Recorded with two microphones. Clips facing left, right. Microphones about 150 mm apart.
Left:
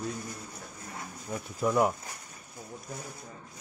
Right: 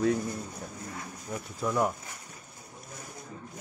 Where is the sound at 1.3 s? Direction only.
5° left (ahead or behind).